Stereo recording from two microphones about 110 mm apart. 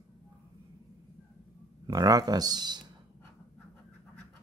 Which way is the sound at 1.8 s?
35° right (ahead or behind).